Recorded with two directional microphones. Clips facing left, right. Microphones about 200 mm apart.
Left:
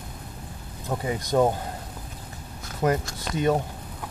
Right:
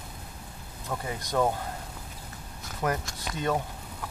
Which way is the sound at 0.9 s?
20° left (ahead or behind).